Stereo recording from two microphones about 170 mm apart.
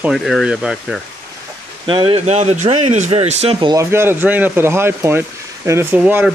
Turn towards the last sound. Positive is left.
turn(degrees=-10)  # may be behind; listen again after turning